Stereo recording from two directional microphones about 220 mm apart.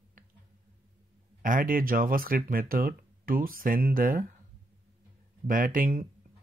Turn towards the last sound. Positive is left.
turn(degrees=-40)  # may be behind; listen again after turning